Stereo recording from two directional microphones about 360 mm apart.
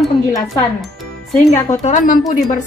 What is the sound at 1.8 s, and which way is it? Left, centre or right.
Speech, left.